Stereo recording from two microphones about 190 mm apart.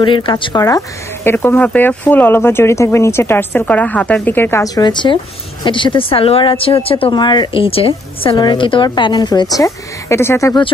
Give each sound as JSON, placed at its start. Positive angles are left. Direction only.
{"t": 0.0, "sound": "speech", "side_deg": 25}